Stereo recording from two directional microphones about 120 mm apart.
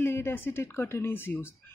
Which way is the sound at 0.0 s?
20° left (ahead or behind).